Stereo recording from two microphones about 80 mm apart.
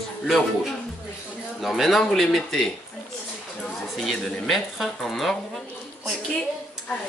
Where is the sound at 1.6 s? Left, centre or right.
Centre.